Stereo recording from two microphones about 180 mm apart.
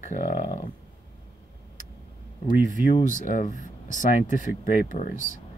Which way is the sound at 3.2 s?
45° left (ahead or behind).